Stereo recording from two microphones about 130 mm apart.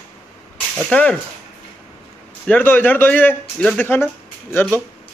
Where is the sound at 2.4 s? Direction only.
15° left (ahead or behind).